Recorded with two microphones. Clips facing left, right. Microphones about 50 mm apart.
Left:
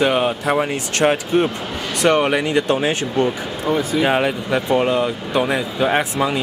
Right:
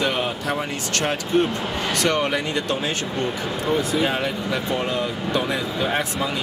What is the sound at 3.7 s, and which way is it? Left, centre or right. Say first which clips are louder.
Speech: left 3 dB; centre.